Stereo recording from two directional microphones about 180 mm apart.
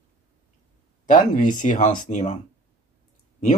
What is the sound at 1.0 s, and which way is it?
Speech, 50° left (ahead or behind).